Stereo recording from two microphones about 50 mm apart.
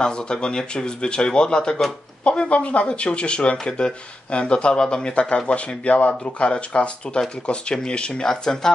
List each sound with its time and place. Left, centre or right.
0.0 s speech: centre